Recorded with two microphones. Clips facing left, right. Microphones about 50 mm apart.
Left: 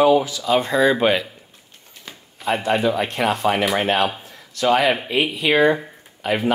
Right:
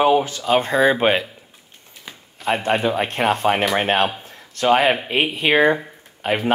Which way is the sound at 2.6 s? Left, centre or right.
Right.